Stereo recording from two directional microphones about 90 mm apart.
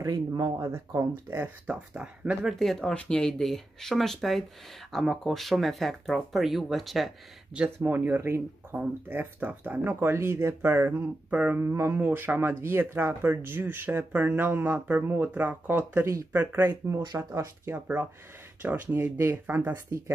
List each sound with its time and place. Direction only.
0.0 s speech: 45° right (ahead or behind)
0.7 s speech: 30° right (ahead or behind)
2.4 s speech: centre (ahead or behind)
7.8 s speech: 25° right (ahead or behind)
11.2 s a sound: 15° right (ahead or behind)
11.6 s speech: 30° right (ahead or behind)
17.3 s speech: 35° right (ahead or behind)
17.7 s speech: 20° right (ahead or behind)
19.9 s speech: 35° right (ahead or behind)